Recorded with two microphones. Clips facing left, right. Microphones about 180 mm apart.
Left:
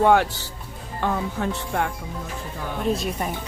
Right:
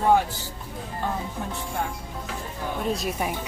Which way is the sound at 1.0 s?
80° left.